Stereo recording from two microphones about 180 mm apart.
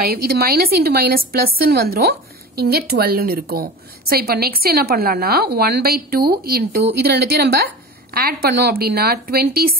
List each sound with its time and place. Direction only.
0.0 s a woman's voice: 60° right (ahead or behind)